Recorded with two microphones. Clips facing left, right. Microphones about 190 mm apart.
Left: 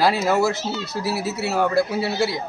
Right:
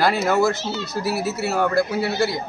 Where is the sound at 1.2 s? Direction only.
Centre (ahead or behind).